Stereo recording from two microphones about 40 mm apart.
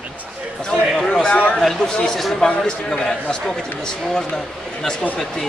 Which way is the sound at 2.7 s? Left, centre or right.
Centre.